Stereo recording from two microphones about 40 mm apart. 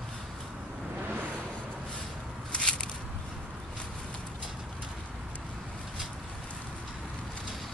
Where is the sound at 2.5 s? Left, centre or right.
Left.